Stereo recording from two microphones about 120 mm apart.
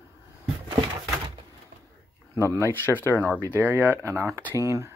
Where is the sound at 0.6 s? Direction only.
40° right (ahead or behind).